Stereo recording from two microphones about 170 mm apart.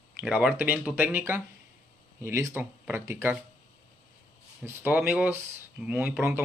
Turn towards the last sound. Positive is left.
turn(degrees=-10)  # may be behind; listen again after turning